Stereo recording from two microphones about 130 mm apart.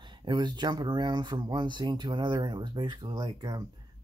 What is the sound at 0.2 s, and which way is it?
Speech, 35° right (ahead or behind).